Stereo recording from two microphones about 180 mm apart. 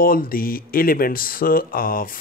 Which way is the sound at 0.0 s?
55° left (ahead or behind).